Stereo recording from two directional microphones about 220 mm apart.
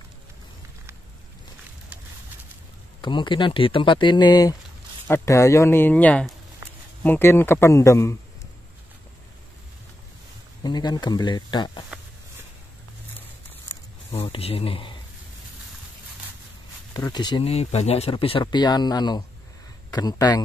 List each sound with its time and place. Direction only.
3.0 s a man's voice: 20° left (ahead or behind)
10.6 s speech: 20° left (ahead or behind)
14.1 s speech: 25° left (ahead or behind)
16.9 s speech: 15° left (ahead or behind)